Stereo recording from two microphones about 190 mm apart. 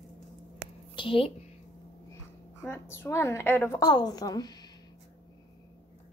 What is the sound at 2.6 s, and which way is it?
A woman's voice, 10° left (ahead or behind).